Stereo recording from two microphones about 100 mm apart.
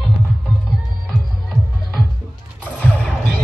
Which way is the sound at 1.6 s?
Centre (ahead or behind).